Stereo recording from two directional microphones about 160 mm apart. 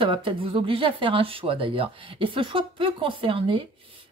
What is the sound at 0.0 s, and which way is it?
Speech, 30° right (ahead or behind).